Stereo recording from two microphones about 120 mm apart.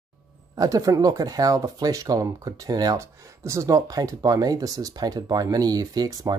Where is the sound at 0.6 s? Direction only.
30° right (ahead or behind).